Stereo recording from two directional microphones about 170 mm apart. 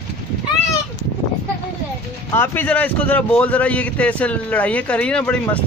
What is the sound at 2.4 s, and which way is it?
A man's voice, 10° left (ahead or behind).